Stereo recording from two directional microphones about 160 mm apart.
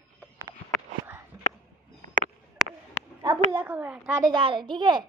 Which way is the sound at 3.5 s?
10° right (ahead or behind).